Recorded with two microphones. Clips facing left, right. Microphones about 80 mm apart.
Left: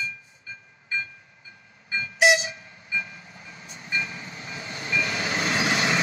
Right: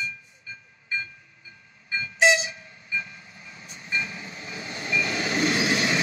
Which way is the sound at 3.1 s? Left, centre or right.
Left.